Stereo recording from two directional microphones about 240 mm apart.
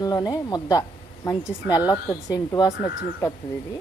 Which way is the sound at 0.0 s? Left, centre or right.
Centre.